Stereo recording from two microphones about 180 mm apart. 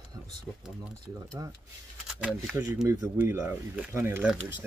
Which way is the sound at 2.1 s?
5° right (ahead or behind).